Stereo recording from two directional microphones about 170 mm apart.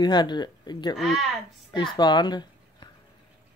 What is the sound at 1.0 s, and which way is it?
Speech, centre (ahead or behind).